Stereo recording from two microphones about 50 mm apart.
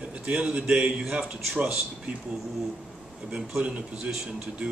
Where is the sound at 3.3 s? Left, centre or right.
Centre.